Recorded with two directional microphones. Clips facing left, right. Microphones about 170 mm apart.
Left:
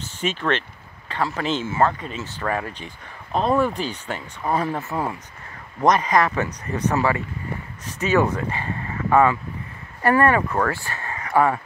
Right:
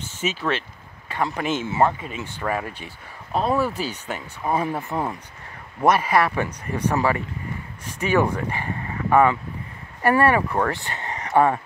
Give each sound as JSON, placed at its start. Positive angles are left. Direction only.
{"t": 0.2, "sound": "speech", "side_deg": -5}